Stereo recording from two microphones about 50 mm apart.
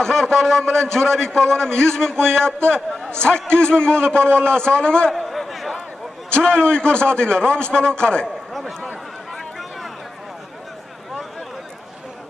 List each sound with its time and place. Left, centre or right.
0.0 s a man's voice: centre
5.1 s a sound: centre
6.3 s a man's voice: left